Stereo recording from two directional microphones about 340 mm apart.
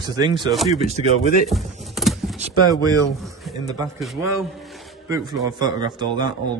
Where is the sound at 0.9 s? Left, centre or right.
Centre.